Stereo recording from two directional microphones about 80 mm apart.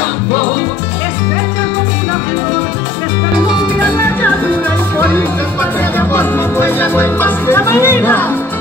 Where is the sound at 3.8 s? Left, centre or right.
Left.